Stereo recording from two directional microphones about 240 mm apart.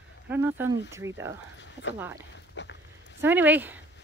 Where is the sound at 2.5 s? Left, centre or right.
Left.